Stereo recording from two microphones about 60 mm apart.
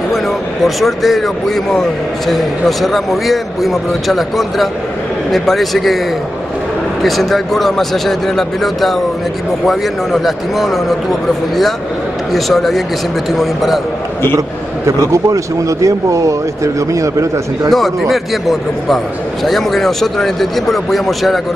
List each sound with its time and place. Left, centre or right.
0.7 s a man's voice: centre
7.0 s a man's voice: centre
12.3 s a man's voice: centre
15.1 s speech: right
17.6 s a man's voice: centre